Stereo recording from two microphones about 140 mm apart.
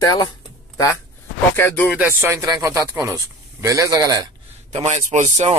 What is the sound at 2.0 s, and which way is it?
Speech, 15° right (ahead or behind).